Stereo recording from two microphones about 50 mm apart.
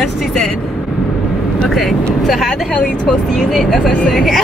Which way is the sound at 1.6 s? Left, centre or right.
Centre.